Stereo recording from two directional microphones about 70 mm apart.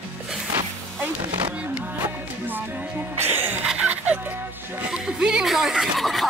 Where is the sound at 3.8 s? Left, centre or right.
Right.